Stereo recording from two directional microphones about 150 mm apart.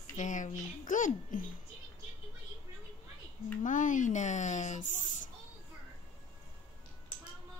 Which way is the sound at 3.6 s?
60° left (ahead or behind).